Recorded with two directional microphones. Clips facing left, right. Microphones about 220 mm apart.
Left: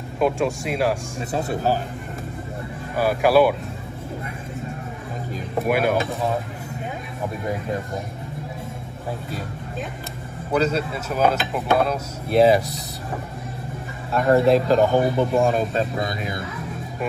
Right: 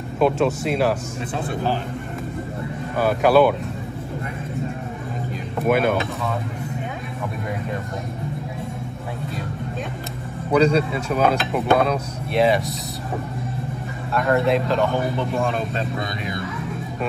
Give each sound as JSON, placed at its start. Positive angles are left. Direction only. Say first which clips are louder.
{"t": 0.2, "sound": "speech", "louder": "right 2 dB", "side_deg": 10}
{"t": 0.7, "sound": "speech", "louder": "even", "side_deg": 0}
{"t": 1.3, "sound": "speech", "louder": "left 2 dB", "side_deg": 40}
{"t": 3.0, "sound": "speech", "louder": "right 1 dB", "side_deg": 10}
{"t": 5.6, "sound": "speech", "louder": "right 1 dB", "side_deg": 5}
{"t": 10.5, "sound": "speech", "louder": "right 4 dB", "side_deg": 5}
{"t": 14.1, "sound": "speech", "louder": "left 3 dB", "side_deg": 30}
{"t": 14.4, "sound": "speech", "louder": "left 3 dB", "side_deg": 0}
{"t": 15.1, "sound": "speech", "louder": "left 4 dB", "side_deg": 40}